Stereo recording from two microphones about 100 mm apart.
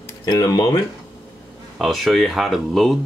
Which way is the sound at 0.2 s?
40° left (ahead or behind).